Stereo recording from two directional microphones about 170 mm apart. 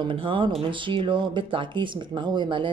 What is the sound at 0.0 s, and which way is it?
Speech, 30° right (ahead or behind).